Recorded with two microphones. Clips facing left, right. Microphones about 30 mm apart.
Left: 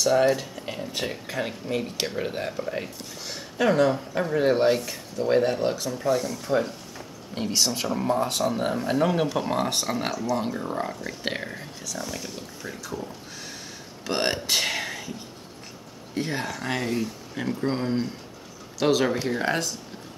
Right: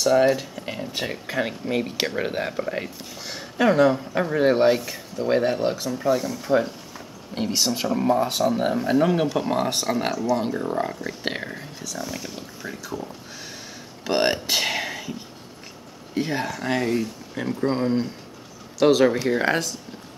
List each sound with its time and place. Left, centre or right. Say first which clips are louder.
0.0 s speech: right 2 dB; centre
16.2 s speech: right 3 dB; centre
19.3 s speech: right 4 dB; centre